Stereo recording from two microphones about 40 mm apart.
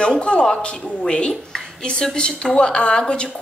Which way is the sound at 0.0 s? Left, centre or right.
Left.